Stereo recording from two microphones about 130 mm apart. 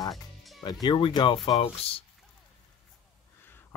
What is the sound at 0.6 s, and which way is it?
Speech, 30° left (ahead or behind).